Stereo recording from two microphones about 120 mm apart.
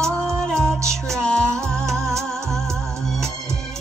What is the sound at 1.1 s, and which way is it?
Music, 5° left (ahead or behind).